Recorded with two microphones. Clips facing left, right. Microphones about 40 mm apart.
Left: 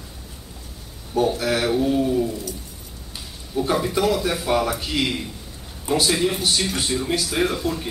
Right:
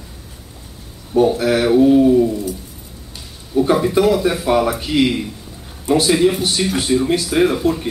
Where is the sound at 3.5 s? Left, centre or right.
Centre.